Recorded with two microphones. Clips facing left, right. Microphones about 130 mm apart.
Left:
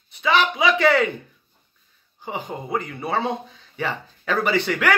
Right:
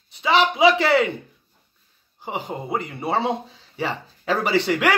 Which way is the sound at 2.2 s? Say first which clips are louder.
Right 1 dB; 25° right (ahead or behind).